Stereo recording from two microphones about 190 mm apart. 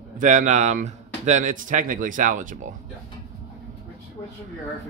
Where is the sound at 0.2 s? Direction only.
40° right (ahead or behind).